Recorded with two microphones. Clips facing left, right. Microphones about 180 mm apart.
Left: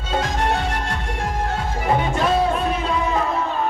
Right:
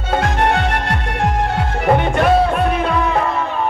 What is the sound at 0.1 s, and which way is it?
Music, 60° right (ahead or behind).